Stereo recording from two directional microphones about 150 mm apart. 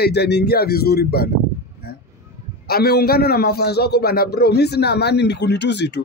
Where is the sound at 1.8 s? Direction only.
90° left.